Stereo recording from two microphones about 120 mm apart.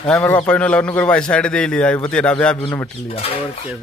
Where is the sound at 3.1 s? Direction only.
55° left (ahead or behind).